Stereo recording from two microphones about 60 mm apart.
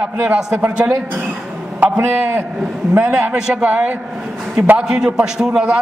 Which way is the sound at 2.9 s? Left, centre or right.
Right.